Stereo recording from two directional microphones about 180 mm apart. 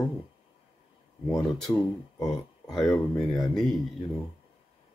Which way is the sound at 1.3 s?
20° left (ahead or behind).